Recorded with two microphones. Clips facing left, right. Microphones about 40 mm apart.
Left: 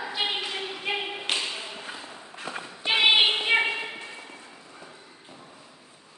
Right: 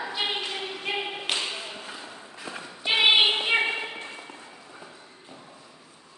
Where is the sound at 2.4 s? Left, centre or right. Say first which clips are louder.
Left 3 dB; left.